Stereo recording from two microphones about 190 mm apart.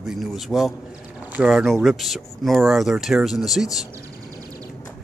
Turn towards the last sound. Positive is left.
turn(degrees=0)  # may be behind; listen again after turning